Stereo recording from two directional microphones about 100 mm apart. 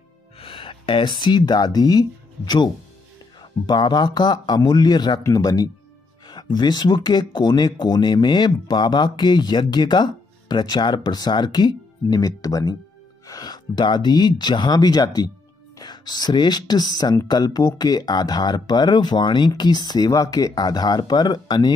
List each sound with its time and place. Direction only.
0.4 s speech: 60° left (ahead or behind)